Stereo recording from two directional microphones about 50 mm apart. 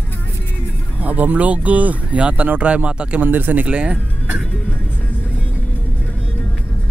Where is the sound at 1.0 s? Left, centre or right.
Right.